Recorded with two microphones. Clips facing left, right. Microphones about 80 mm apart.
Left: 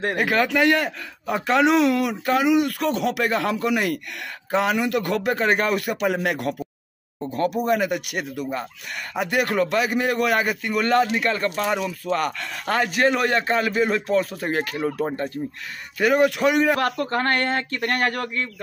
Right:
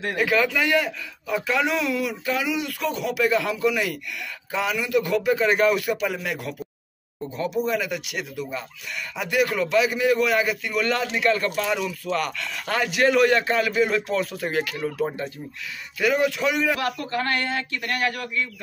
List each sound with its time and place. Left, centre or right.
0.0 s speech: left
0.3 s a man's voice: left
5.9 s a man's voice: left
10.1 s a man's voice: left
10.5 s speech: left
16.2 s a man's voice: left
16.8 s speech: left